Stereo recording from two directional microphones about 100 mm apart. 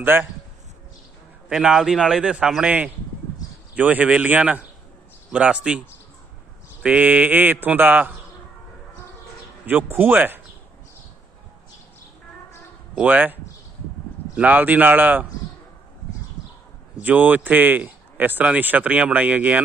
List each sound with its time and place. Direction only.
0.0 s speech: 20° right (ahead or behind)
1.5 s a man's voice: 5° right (ahead or behind)
3.7 s speech: 15° right (ahead or behind)
9.7 s speech: 20° right (ahead or behind)
12.9 s speech: 15° right (ahead or behind)
17.0 s speech: 15° right (ahead or behind)